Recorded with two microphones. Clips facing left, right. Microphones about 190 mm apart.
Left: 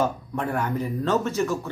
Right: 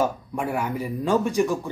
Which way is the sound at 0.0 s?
10° right (ahead or behind).